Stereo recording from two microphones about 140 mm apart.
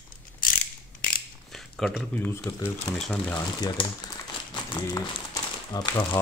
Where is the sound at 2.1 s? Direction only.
15° left (ahead or behind).